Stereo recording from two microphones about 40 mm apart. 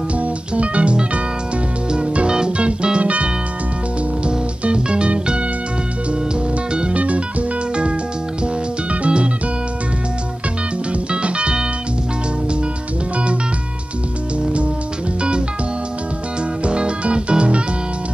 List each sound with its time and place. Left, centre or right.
0.1 s music: right
4.3 s music: right
6.7 s music: right
7.0 s music: right
9.0 s music: right
10.9 s music: right
16.6 s music: right